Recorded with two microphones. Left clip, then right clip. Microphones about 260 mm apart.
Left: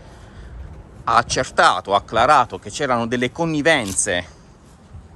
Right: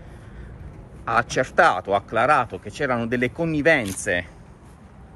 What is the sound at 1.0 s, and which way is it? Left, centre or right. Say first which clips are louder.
Speech: left 4 dB; centre.